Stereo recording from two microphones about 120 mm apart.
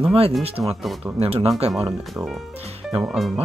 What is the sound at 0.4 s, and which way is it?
Speech, 55° right (ahead or behind).